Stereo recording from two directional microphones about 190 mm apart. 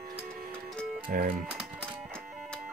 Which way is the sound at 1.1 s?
50° right (ahead or behind).